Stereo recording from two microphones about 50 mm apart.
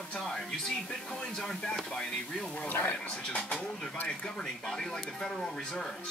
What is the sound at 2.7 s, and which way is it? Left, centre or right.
Speech, left.